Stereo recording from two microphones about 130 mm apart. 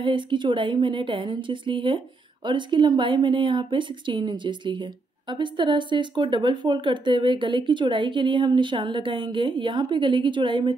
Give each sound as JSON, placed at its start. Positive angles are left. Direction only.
{"t": 0.0, "sound": "speech", "side_deg": -40}